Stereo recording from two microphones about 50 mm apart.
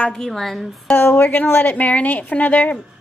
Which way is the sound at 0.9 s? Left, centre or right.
Left.